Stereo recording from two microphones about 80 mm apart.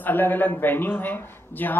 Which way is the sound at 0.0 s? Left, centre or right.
Left.